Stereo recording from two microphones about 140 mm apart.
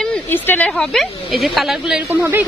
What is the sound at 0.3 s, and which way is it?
Speech, 15° left (ahead or behind).